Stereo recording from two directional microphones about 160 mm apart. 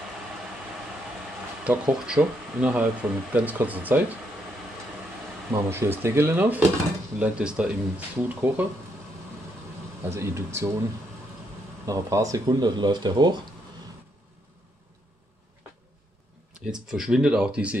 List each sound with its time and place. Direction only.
1.6 s speech: 5° right (ahead or behind)
5.5 s speech: 15° right (ahead or behind)
10.0 s speech: 15° right (ahead or behind)
11.8 s speech: 20° right (ahead or behind)
16.6 s speech: 5° right (ahead or behind)